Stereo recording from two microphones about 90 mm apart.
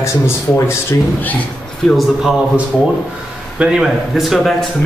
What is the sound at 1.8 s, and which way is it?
Speech, 5° left (ahead or behind).